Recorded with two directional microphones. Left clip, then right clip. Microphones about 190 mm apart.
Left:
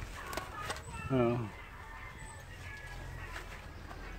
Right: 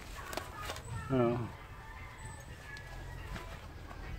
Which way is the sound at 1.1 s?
5° left (ahead or behind).